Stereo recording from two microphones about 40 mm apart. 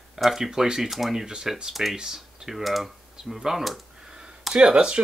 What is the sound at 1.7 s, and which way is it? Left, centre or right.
Speech, centre.